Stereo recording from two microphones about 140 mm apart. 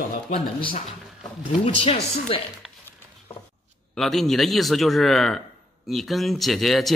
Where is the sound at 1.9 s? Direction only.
40° left (ahead or behind).